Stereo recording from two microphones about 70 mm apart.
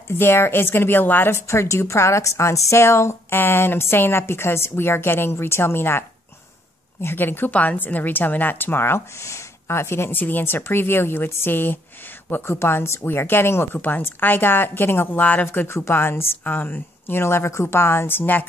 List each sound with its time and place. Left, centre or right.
0.1 s a woman's voice: left
1.3 s a woman's voice: left
13.7 s a woman's voice: left